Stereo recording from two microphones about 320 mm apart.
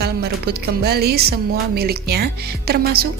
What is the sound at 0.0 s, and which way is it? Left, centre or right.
A woman's voice, right.